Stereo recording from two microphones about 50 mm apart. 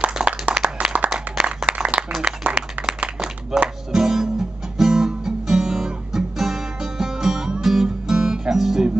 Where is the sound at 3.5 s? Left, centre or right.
Centre.